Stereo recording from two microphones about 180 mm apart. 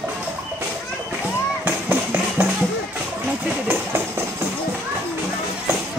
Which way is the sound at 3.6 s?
15° right (ahead or behind).